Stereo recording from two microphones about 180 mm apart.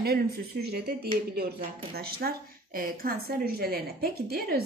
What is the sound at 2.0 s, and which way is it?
A woman's voice, 60° right (ahead or behind).